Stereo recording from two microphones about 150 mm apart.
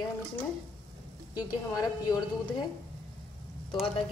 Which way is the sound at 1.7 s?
25° left (ahead or behind).